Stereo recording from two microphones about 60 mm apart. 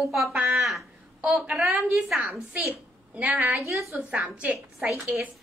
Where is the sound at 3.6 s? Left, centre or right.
Right.